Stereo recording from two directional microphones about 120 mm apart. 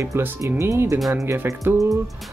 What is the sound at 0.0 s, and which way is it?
Speech, 20° right (ahead or behind).